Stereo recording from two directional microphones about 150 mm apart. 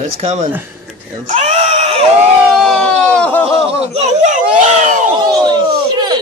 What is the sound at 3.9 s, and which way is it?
Speech, 50° right (ahead or behind).